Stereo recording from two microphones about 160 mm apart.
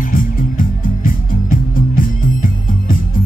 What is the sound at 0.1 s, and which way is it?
Music, 60° left (ahead or behind).